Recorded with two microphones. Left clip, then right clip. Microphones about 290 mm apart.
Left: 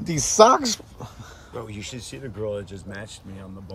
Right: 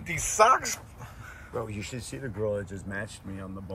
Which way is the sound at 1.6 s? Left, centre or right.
Centre.